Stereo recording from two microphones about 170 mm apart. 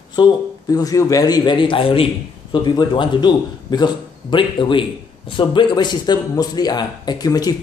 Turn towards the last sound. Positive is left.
turn(degrees=20)  # may be behind; listen again after turning